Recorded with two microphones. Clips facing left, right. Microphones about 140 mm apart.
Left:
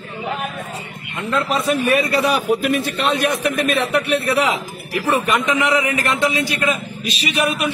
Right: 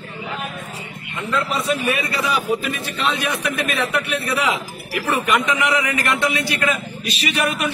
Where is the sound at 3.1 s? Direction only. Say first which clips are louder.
Left 4 dB; 45° left (ahead or behind).